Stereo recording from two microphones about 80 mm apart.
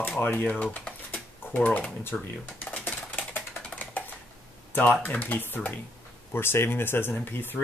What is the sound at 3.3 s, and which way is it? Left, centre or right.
Typing, centre.